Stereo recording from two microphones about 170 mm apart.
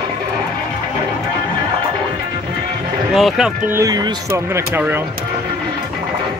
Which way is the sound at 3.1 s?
Centre (ahead or behind).